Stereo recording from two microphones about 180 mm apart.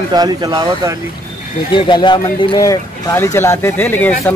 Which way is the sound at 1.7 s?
25° left (ahead or behind).